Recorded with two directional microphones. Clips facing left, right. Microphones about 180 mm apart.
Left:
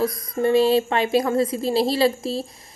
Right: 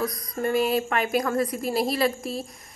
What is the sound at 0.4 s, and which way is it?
A woman's voice, 30° left (ahead or behind).